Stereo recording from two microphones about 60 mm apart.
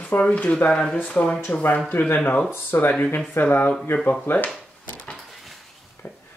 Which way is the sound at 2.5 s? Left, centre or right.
Left.